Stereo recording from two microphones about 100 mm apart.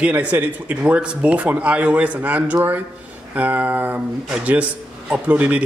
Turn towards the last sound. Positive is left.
turn(degrees=-15)  # may be behind; listen again after turning